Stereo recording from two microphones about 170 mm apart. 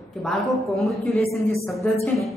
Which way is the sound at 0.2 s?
Centre (ahead or behind).